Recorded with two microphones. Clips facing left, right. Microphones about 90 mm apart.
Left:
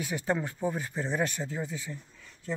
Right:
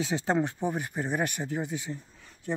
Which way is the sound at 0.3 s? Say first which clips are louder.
Right 1 dB; 20° right (ahead or behind).